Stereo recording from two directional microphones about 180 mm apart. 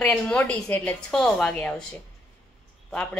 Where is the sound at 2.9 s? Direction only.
5° left (ahead or behind).